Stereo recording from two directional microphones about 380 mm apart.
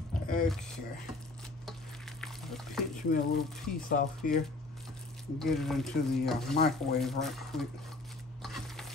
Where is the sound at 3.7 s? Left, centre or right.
Left.